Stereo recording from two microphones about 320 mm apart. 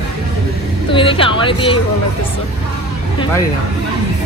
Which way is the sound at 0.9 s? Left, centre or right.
Centre.